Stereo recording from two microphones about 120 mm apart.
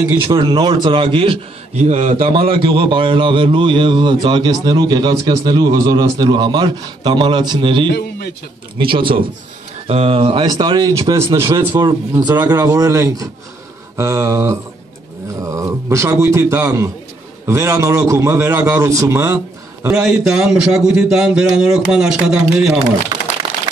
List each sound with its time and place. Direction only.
0.3 s a man's voice: 40° right (ahead or behind)
1.8 s a man's voice: 75° right (ahead or behind)
2.2 s a man's voice: 45° right (ahead or behind)
9.8 s a man's voice: 55° right (ahead or behind)
10.4 s a man's voice: 35° right (ahead or behind)
10.9 s a man's voice: 25° right (ahead or behind)
19.9 s a man's voice: 5° right (ahead or behind)